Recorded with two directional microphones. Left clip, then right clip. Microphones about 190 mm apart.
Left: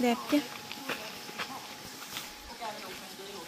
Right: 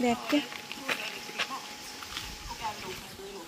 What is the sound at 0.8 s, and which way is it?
Walk, 25° left (ahead or behind).